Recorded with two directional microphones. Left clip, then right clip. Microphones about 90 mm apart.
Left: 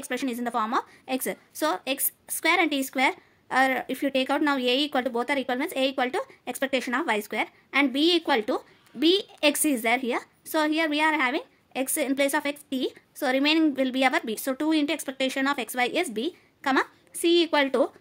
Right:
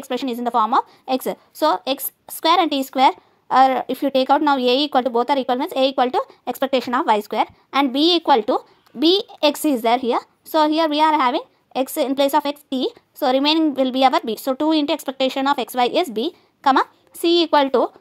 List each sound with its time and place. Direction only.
0.1 s a woman's voice: 50° right (ahead or behind)
14.7 s speech: 55° right (ahead or behind)